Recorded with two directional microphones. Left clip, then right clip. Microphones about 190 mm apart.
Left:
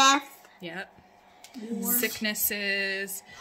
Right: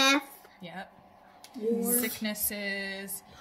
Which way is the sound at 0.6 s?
55° left (ahead or behind).